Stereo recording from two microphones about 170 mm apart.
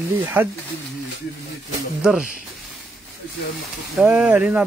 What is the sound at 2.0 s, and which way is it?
Speech, 10° right (ahead or behind).